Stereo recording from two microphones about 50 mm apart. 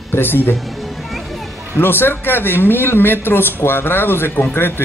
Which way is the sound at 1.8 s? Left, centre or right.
Left.